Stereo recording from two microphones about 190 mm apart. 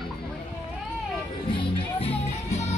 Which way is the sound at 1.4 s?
30° left (ahead or behind).